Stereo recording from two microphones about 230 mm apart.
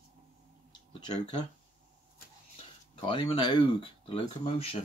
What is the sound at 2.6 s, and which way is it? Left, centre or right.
Speech, left.